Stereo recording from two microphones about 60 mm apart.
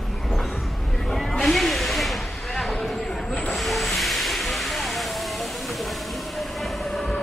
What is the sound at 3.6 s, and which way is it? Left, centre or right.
Vehicle, centre.